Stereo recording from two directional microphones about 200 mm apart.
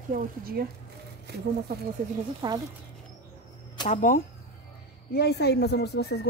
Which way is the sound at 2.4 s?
25° right (ahead or behind).